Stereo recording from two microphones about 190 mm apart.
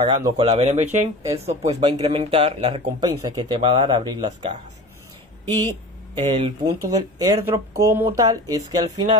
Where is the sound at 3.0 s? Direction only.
20° right (ahead or behind).